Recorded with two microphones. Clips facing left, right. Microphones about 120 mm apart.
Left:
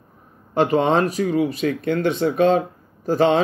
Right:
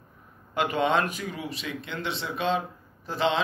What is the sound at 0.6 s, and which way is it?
Speech, 35° left (ahead or behind).